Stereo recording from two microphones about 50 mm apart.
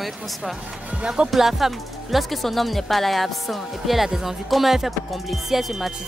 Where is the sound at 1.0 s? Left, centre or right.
Centre.